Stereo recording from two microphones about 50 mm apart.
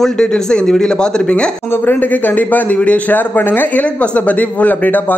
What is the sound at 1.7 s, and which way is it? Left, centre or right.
A man's voice, left.